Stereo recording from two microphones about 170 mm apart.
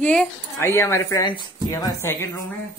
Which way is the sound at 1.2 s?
25° left (ahead or behind).